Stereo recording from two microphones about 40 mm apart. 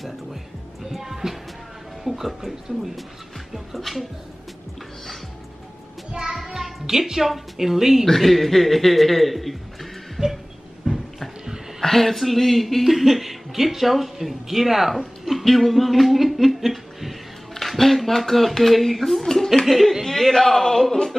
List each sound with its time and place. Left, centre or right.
0.9 s a man's voice: centre
6.1 s a sound: centre
8.1 s a man's voice: centre
10.9 s a sound: right
11.8 s speech: centre
19.6 s a man's voice: centre